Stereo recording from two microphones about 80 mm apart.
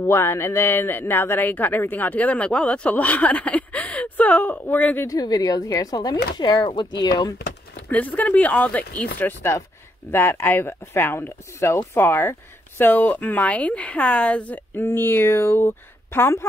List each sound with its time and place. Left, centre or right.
0.0 s speech: left
5.0 s speech: left
6.3 s speech: left
7.7 s speech: centre
14.8 s speech: left